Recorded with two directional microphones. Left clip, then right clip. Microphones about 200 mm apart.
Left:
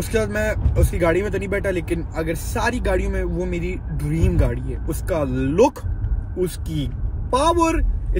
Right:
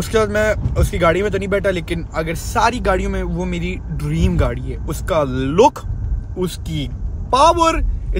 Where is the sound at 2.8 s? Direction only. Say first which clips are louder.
Right 4 dB; 20° right (ahead or behind).